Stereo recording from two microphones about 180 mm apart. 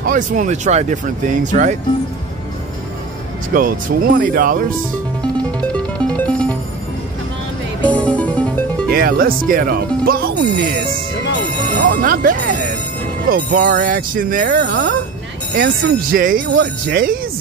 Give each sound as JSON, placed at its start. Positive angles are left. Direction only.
{"t": 0.0, "sound": "speech", "side_deg": -45}
{"t": 3.5, "sound": "speech", "side_deg": -50}
{"t": 5.2, "sound": "music", "side_deg": 5}
{"t": 7.9, "sound": "music", "side_deg": 10}
{"t": 8.9, "sound": "speech", "side_deg": -55}